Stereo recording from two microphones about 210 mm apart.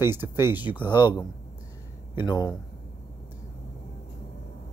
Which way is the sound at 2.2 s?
20° left (ahead or behind).